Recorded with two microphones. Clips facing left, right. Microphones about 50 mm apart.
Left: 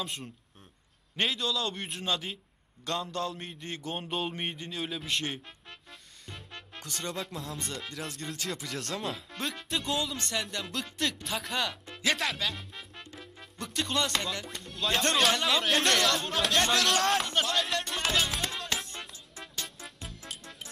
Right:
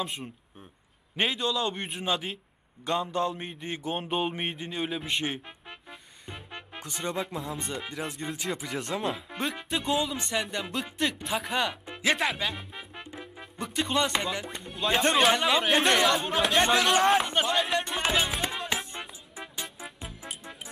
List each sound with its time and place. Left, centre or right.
0.0 s a man's voice: centre
3.1 s a sound: centre
18.9 s music: centre